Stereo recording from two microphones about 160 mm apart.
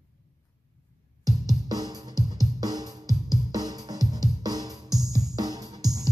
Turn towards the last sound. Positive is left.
turn(degrees=-25)  # may be behind; listen again after turning